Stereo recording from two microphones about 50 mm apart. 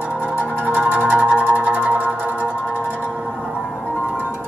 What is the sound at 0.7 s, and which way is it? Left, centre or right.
Music, right.